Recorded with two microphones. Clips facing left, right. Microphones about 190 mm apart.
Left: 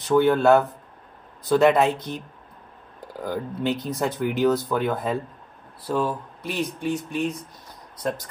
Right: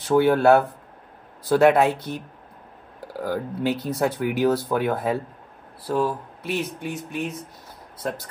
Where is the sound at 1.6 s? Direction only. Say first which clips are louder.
Right 2 dB; 55° right (ahead or behind).